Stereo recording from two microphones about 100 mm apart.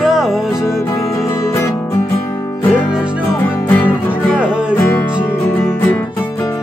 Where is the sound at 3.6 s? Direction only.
20° left (ahead or behind).